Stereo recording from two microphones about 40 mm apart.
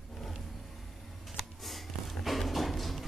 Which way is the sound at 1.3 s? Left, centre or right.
Centre.